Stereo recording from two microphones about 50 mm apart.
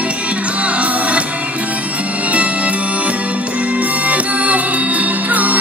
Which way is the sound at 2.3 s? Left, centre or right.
Right.